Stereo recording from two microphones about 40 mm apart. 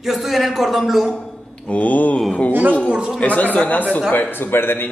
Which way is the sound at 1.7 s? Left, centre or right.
Left.